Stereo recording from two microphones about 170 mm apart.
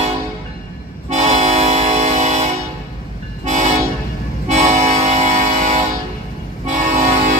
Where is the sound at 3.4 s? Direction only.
45° right (ahead or behind).